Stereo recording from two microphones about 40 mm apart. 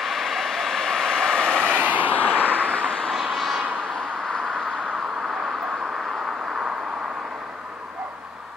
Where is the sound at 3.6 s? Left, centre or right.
Centre.